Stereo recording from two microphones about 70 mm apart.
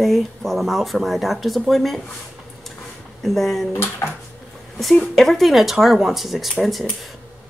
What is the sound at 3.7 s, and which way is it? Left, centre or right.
Speech, left.